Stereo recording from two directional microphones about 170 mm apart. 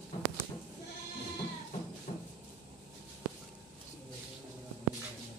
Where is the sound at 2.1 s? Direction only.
45° left (ahead or behind).